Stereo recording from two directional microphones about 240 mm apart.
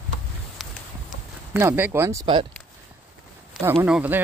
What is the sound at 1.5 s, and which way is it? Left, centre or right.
Speech, centre.